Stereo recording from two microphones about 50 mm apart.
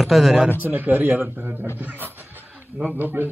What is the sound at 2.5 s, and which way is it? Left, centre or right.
Speech, right.